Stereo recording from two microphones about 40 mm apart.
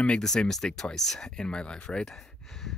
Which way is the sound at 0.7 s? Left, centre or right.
Left.